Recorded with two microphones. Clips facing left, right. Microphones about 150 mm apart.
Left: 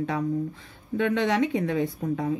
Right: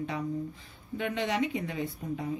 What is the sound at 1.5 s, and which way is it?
Speech, 60° left (ahead or behind).